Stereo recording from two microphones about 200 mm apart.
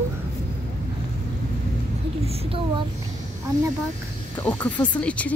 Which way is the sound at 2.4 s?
25° right (ahead or behind).